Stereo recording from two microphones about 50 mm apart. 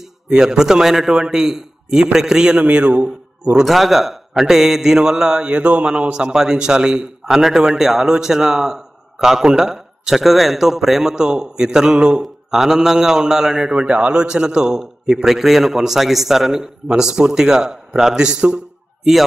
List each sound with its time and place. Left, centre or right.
0.3 s a man's voice: centre
2.6 s speech: right
3.6 s a man's voice: centre
5.6 s a man's voice: right